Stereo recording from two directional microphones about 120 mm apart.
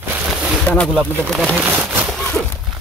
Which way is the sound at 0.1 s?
10° right (ahead or behind).